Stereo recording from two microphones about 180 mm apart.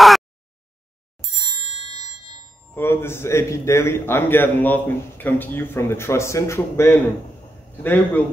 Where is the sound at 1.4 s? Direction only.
25° right (ahead or behind).